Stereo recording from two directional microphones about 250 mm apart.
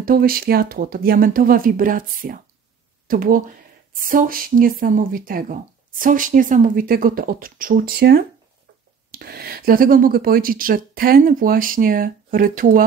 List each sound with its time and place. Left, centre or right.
0.0 s a woman's voice: right